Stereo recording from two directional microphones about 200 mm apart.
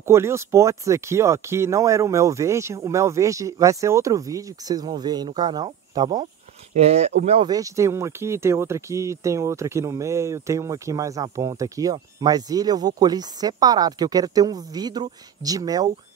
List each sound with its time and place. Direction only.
0.0 s speech: 15° right (ahead or behind)
6.7 s speech: 30° right (ahead or behind)